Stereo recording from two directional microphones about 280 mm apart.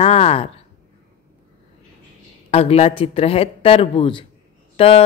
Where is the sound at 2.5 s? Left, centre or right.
Left.